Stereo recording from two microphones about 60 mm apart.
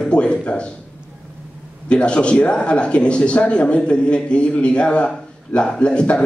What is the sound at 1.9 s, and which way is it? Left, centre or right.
Speech, centre.